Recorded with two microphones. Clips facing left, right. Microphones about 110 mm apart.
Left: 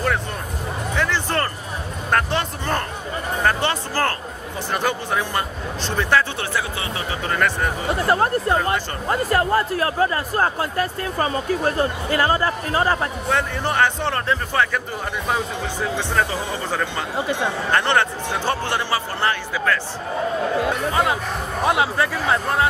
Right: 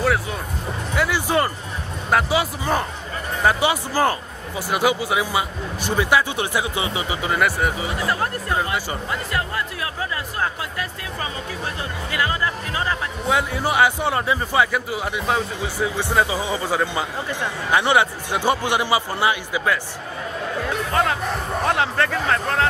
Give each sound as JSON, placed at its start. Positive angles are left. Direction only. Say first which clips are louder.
{"t": 0.9, "sound": "music", "louder": "right 3 dB", "side_deg": -10}
{"t": 2.0, "sound": "speech", "louder": "right 2 dB", "side_deg": -5}
{"t": 8.1, "sound": "speech", "louder": "left 7 dB", "side_deg": 30}
{"t": 13.3, "sound": "speech", "louder": "right 2 dB", "side_deg": -10}
{"t": 20.6, "sound": "speech", "louder": "left 1 dB", "side_deg": 10}